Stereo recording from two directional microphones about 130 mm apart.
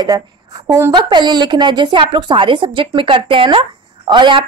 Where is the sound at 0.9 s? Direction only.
35° right (ahead or behind).